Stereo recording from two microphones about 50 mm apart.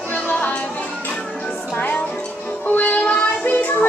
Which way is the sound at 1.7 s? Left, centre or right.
Left.